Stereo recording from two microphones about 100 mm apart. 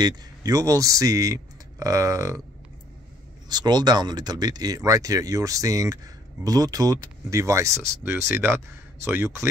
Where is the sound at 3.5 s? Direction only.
45° right (ahead or behind).